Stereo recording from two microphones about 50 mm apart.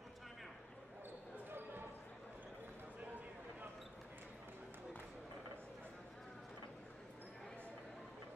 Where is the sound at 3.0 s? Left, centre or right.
Right.